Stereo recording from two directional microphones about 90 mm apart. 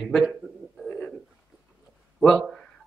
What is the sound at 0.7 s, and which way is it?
Bird, 5° left (ahead or behind).